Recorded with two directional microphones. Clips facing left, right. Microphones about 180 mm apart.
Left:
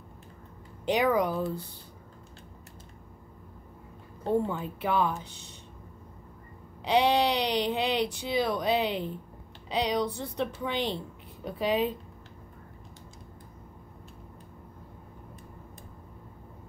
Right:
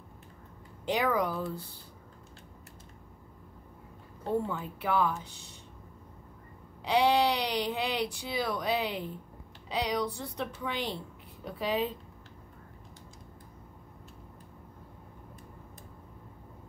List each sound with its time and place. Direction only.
0.8 s speech: 20° left (ahead or behind)
4.2 s speech: 20° left (ahead or behind)
6.8 s speech: 20° left (ahead or behind)